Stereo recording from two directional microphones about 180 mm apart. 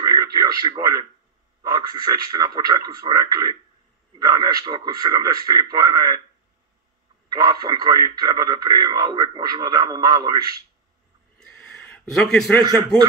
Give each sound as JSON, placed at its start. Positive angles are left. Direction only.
{"t": 0.0, "sound": "radio", "side_deg": -20}
{"t": 1.6, "sound": "a man's voice", "side_deg": -20}
{"t": 7.2, "sound": "a man's voice", "side_deg": -20}
{"t": 11.3, "sound": "a sound", "side_deg": 5}